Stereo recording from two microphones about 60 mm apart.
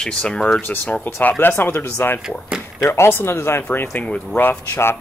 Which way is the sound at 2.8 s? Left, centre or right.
Left.